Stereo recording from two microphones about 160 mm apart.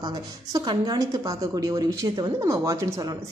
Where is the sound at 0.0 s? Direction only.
25° right (ahead or behind).